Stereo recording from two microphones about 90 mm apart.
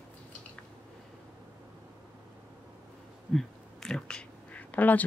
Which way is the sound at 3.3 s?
5° left (ahead or behind).